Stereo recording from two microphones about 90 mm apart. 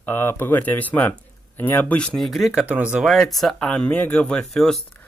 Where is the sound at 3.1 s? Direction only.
Centre (ahead or behind).